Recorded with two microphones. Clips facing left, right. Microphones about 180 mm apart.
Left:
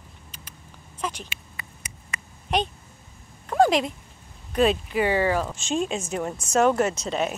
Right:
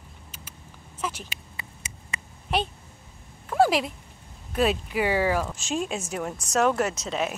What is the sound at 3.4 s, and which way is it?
Speech, 5° right (ahead or behind).